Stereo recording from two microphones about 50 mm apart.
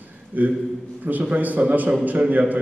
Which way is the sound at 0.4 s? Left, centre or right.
Right.